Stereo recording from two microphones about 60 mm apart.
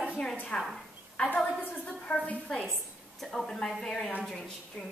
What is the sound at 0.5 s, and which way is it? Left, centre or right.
A woman's voice, left.